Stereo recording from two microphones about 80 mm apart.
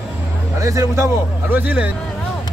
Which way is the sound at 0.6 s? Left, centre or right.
Right.